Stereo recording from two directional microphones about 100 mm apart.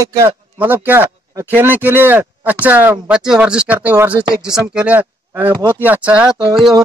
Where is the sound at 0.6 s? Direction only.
20° right (ahead or behind).